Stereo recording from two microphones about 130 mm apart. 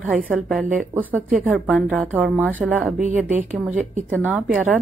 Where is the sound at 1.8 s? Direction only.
15° right (ahead or behind).